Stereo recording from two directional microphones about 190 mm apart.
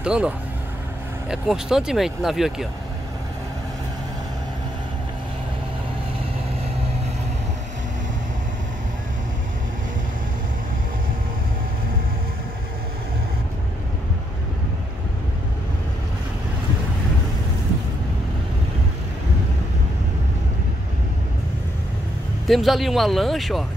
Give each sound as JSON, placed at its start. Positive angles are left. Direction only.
{"t": 0.0, "sound": "speech", "side_deg": -5}
{"t": 1.3, "sound": "speech", "side_deg": -5}
{"t": 22.5, "sound": "speech", "side_deg": 0}